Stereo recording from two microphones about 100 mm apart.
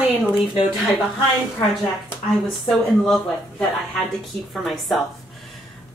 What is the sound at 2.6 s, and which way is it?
Speech, 5° left (ahead or behind).